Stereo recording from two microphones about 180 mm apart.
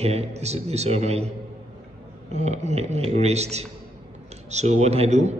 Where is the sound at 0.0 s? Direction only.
35° right (ahead or behind).